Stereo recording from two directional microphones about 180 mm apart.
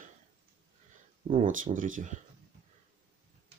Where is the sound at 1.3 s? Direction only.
45° right (ahead or behind).